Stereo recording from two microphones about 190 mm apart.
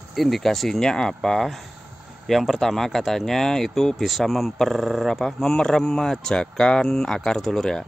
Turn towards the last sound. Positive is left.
turn(degrees=0)  # may be behind; listen again after turning